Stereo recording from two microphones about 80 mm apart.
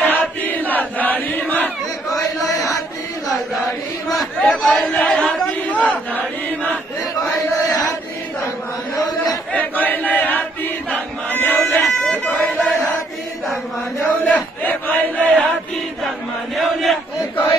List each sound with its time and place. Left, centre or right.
0.0 s chant: left
4.1 s chatter: centre
6.7 s chant: centre
7.5 s chant: left
9.5 s chant: left
14.2 s crowd: left
16.5 s battle cry: centre